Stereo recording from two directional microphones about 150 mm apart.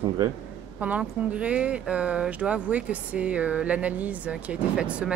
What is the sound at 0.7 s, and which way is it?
Speech, 10° right (ahead or behind).